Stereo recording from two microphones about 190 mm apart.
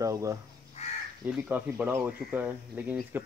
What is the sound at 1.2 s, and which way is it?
Speech, 10° right (ahead or behind).